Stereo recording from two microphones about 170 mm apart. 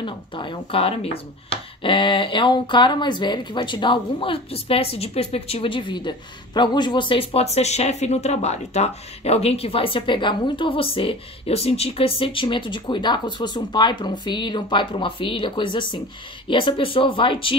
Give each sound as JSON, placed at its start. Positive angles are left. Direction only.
{"t": 0.0, "sound": "speech", "side_deg": 30}